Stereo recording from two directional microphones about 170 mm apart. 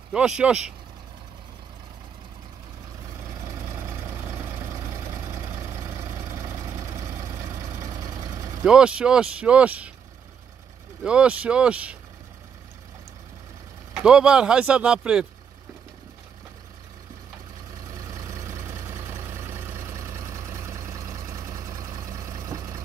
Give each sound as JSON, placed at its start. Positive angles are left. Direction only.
{"t": 0.1, "sound": "speech", "side_deg": -5}
{"t": 3.3, "sound": "vehicle", "side_deg": -15}
{"t": 8.6, "sound": "speech", "side_deg": -5}
{"t": 11.1, "sound": "speech", "side_deg": -5}
{"t": 13.9, "sound": "speech", "side_deg": -5}
{"t": 17.9, "sound": "vehicle", "side_deg": -20}